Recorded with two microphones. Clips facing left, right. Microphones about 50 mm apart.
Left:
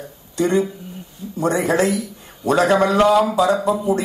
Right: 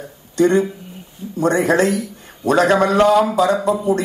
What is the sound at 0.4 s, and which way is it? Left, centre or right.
A man's voice, right.